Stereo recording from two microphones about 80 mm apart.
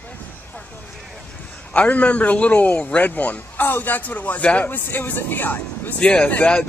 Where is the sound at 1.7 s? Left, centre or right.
Centre.